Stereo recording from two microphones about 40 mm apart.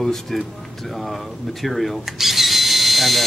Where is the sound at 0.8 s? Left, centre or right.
Centre.